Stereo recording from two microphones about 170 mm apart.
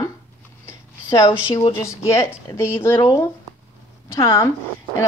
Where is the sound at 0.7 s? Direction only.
20° left (ahead or behind).